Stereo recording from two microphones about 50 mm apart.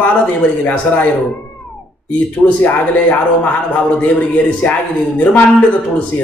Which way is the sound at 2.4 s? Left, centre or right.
Left.